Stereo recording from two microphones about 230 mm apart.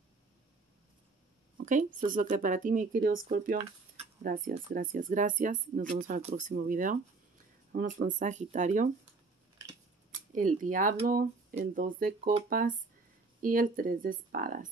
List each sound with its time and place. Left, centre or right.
1.6 s a sound: right
2.1 s speech: right
10.3 s speech: right